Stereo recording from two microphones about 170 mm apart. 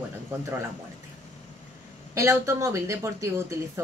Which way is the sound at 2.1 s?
15° right (ahead or behind).